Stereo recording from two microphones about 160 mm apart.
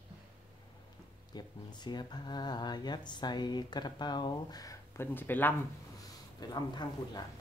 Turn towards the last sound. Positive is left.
turn(degrees=25)  # may be behind; listen again after turning